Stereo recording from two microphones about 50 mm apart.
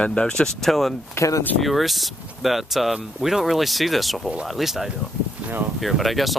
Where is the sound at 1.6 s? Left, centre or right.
Centre.